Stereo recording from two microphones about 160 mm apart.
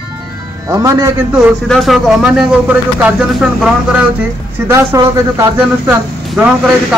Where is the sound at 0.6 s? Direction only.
20° right (ahead or behind).